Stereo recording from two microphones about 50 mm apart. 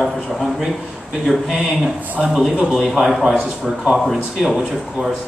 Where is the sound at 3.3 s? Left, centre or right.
Centre.